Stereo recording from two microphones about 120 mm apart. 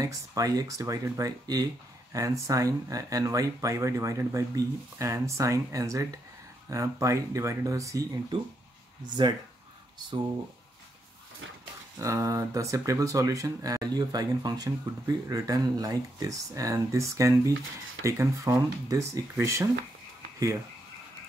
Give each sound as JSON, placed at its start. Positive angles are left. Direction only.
{"t": 0.0, "sound": "speech", "side_deg": -30}
{"t": 9.2, "sound": "speech", "side_deg": -45}
{"t": 12.0, "sound": "speech", "side_deg": -25}